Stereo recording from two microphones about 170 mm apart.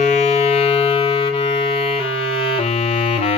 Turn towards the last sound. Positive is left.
turn(degrees=35)  # may be behind; listen again after turning